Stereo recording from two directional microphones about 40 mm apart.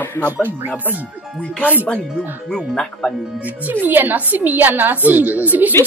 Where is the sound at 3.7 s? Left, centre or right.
Right.